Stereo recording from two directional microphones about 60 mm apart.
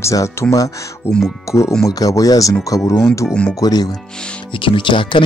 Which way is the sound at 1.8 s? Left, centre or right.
Left.